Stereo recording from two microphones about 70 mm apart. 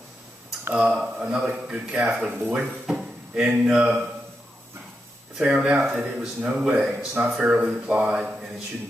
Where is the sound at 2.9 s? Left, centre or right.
Centre.